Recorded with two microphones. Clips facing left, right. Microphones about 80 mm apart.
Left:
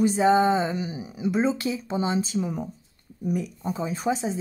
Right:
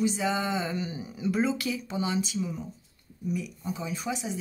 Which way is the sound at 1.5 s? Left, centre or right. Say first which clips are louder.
Left 4 dB; left.